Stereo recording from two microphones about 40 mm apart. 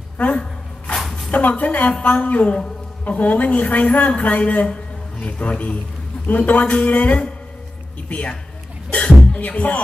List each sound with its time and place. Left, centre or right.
0.2 s dog: left
1.3 s a woman's voice: left
6.2 s a woman's voice: left
8.9 s music: left
9.5 s a woman's voice: left